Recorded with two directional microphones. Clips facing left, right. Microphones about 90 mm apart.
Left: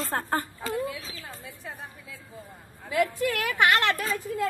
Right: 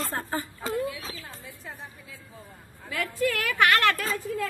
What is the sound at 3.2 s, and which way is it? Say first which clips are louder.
Speech: right 1 dB; 20° left (ahead or behind).